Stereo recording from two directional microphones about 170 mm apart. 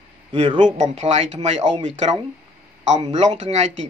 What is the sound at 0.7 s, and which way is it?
Speech, 40° right (ahead or behind).